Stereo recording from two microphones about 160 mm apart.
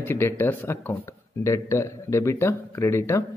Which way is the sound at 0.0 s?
15° left (ahead or behind).